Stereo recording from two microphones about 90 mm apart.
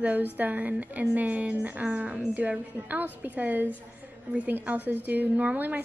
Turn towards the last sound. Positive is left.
turn(degrees=-20)  # may be behind; listen again after turning